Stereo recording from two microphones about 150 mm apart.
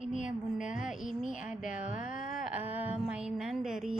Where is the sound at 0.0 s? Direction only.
55° left (ahead or behind).